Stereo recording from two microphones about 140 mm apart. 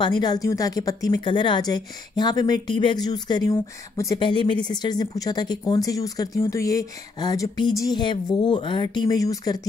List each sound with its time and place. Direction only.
0.0 s a woman's voice: 30° left (ahead or behind)